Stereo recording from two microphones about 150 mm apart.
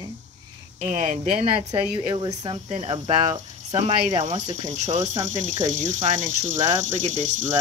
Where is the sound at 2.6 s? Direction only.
50° right (ahead or behind).